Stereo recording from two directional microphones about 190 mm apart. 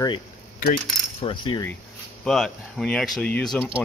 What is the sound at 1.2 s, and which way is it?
Speech, 25° left (ahead or behind).